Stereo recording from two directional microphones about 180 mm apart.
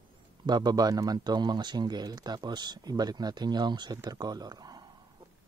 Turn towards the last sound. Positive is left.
turn(degrees=-20)  # may be behind; listen again after turning